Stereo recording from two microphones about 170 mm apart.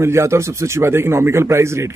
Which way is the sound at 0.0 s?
15° right (ahead or behind).